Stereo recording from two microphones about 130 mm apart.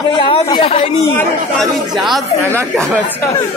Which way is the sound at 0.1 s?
40° left (ahead or behind).